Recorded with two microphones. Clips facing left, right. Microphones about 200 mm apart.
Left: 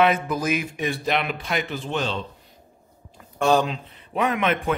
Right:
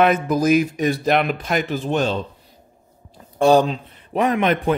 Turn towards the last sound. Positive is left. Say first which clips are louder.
# right 4 dB
turn(degrees=-35)  # may be behind; listen again after turning